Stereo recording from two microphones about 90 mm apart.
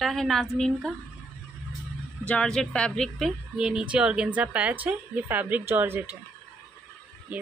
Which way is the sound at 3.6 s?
10° right (ahead or behind).